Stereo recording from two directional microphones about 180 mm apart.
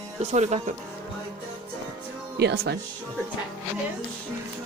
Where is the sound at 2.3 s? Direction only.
65° right (ahead or behind).